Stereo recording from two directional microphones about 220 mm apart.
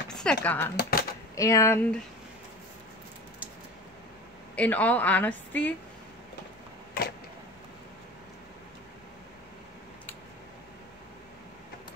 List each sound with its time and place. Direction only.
0.1 s speech: 5° left (ahead or behind)
0.7 s speech: 40° left (ahead or behind)
1.3 s a woman's voice: 15° left (ahead or behind)
4.6 s a woman's voice: 5° left (ahead or behind)